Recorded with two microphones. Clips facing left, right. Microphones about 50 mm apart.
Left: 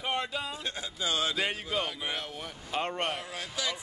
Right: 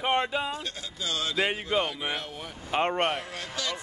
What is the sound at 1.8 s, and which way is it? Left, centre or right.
Speech, centre.